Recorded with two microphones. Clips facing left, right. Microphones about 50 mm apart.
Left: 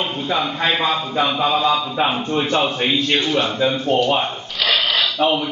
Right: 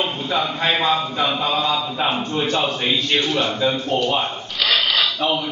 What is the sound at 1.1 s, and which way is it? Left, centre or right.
A man's voice, centre.